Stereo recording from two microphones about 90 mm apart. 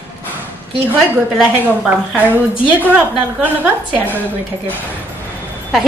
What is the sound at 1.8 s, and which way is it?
Speech, 20° right (ahead or behind).